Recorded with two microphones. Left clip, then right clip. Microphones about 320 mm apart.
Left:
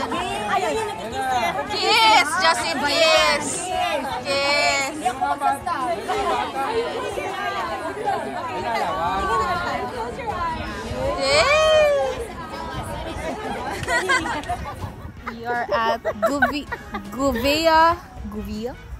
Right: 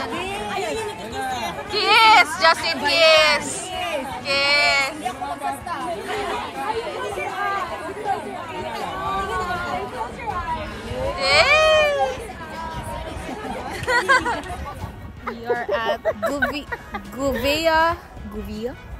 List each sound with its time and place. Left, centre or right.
0.0 s chatter: centre
10.2 s a sound: centre
11.1 s baby cry: centre
13.7 s speech: centre
15.4 s speech: centre
17.3 s speech: left
17.6 s speech: centre